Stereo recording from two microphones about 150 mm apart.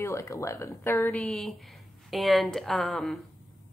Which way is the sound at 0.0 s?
20° left (ahead or behind).